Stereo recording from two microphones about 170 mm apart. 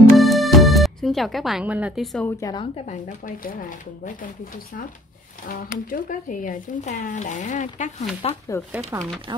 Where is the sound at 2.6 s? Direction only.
40° left (ahead or behind).